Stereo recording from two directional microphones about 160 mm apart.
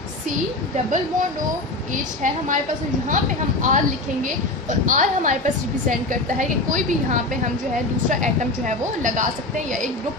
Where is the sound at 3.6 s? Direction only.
55° right (ahead or behind).